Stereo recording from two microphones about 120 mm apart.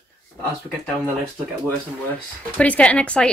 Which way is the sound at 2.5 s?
10° left (ahead or behind).